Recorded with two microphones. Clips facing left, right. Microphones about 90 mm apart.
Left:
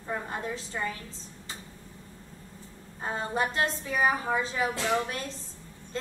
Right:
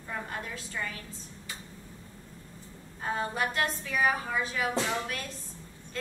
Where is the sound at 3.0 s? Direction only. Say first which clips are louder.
Left 1 dB; 25° left (ahead or behind).